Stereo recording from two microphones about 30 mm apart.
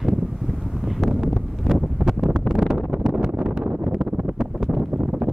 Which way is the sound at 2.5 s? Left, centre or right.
Right.